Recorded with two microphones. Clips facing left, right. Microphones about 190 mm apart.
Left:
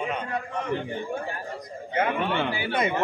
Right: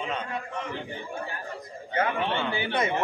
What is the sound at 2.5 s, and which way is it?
Speech, 25° right (ahead or behind).